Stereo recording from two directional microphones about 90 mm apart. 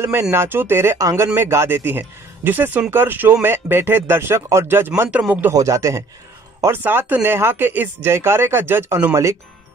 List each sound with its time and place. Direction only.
0.0 s speech: 30° right (ahead or behind)
5.5 s speech: 40° right (ahead or behind)
6.8 s speech: 20° right (ahead or behind)